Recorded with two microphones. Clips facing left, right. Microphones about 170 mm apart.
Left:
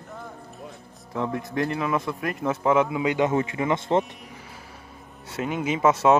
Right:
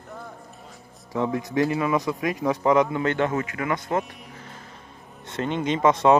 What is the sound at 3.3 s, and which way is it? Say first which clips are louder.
Speech: left 3 dB; 25° left (ahead or behind).